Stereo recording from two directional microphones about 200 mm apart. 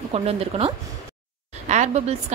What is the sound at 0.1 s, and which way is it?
Speech, 30° right (ahead or behind).